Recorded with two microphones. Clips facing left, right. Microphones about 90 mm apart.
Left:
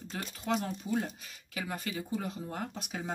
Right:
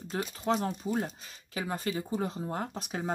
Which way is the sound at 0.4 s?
35° right (ahead or behind).